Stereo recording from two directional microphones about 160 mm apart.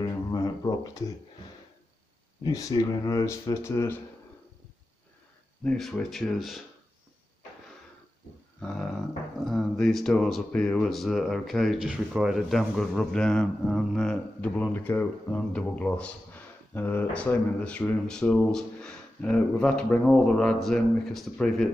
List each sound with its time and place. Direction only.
0.3 s a sound: 20° left (ahead or behind)
2.4 s speech: 25° left (ahead or behind)
5.6 s speech: 5° left (ahead or behind)
8.5 s speech: 5° left (ahead or behind)